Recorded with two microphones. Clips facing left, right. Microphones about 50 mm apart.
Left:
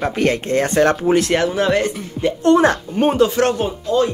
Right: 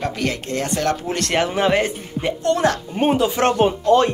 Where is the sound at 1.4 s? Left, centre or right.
Centre.